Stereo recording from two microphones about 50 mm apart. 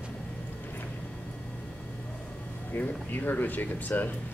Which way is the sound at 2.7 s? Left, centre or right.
Left.